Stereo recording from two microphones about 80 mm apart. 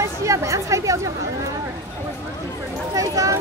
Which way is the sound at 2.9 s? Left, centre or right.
Right.